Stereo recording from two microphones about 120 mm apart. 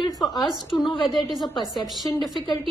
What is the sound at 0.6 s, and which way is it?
Speech, 35° left (ahead or behind).